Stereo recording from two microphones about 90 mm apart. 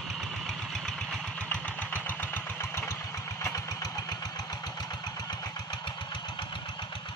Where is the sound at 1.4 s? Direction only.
20° left (ahead or behind).